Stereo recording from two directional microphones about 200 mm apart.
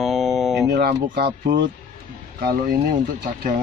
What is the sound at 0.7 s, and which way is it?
Speech, 55° right (ahead or behind).